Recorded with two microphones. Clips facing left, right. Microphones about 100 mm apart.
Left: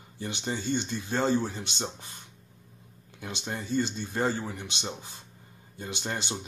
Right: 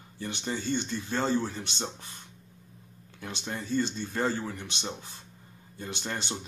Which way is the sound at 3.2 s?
15° left (ahead or behind).